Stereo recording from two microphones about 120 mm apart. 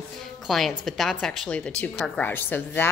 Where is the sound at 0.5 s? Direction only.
Centre (ahead or behind).